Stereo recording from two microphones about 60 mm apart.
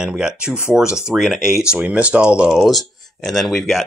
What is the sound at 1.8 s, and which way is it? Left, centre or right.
Speech, right.